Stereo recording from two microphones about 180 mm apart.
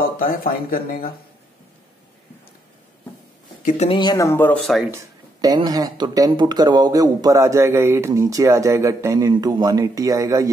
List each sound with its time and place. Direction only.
0.0 s speech: 55° left (ahead or behind)
3.6 s speech: 40° left (ahead or behind)
4.0 s speech: 20° left (ahead or behind)
4.9 s speech: 20° right (ahead or behind)